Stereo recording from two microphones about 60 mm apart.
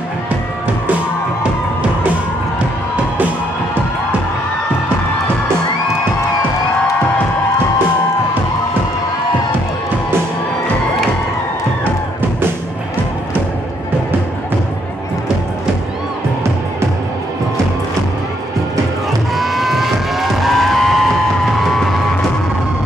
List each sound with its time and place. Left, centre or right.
11.8 s music: right
19.3 s vehicle: centre